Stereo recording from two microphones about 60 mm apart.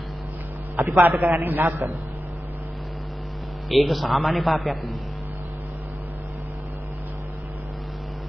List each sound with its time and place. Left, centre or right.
0.8 s a man's voice: right
3.6 s a man's voice: centre